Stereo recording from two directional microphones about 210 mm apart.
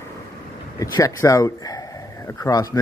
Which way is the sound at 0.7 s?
15° left (ahead or behind).